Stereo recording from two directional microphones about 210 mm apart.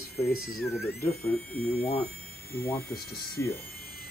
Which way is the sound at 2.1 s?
45° left (ahead or behind).